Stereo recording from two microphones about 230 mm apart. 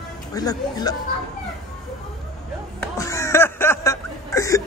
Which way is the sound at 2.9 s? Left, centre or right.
Centre.